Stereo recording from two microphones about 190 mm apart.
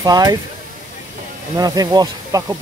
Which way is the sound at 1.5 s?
20° right (ahead or behind).